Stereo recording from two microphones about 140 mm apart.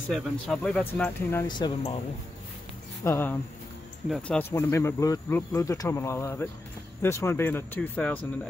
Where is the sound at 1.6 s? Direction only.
30° left (ahead or behind).